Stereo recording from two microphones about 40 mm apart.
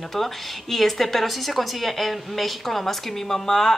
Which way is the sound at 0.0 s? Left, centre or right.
Centre.